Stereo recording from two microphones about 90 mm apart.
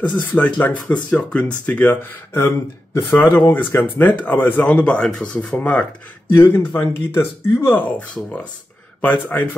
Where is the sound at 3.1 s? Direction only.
20° left (ahead or behind).